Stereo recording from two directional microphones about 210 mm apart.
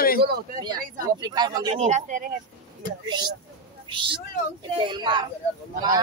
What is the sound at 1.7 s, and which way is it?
Speech, 35° right (ahead or behind).